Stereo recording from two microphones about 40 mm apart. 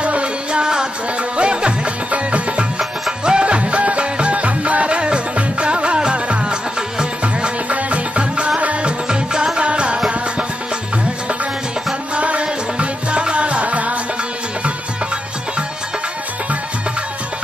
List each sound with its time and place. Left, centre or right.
0.0 s music: right
2.1 s music: right
7.7 s music: right
9.1 s music: centre
12.2 s music: right